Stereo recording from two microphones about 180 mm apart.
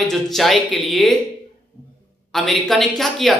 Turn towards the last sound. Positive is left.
turn(degrees=0)  # may be behind; listen again after turning